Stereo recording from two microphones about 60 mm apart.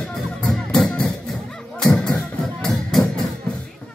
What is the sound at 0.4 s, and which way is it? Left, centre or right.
Music, centre.